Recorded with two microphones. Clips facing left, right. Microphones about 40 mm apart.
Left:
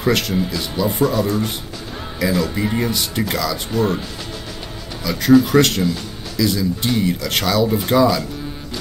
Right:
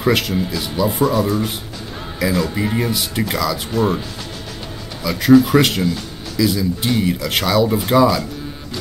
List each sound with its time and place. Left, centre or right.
0.0 s speech: centre
5.0 s speech: centre